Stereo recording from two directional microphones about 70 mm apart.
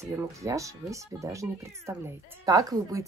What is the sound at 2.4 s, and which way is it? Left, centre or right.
Speech, right.